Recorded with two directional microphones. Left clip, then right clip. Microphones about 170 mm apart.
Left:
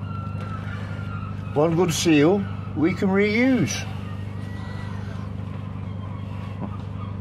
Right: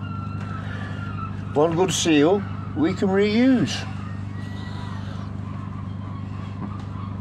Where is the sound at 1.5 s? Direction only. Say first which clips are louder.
Right 1 dB; 15° right (ahead or behind).